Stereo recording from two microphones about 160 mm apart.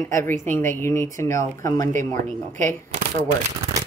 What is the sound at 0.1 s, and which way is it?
A woman's voice, 15° left (ahead or behind).